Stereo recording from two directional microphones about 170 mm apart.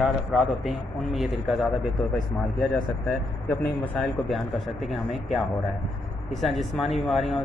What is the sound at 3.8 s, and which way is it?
Speech, 5° left (ahead or behind).